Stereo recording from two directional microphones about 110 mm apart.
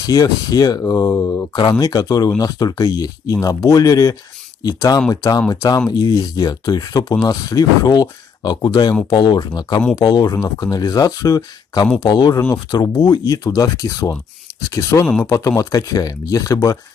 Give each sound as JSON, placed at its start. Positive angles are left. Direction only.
{"t": 0.0, "sound": "speech", "side_deg": 30}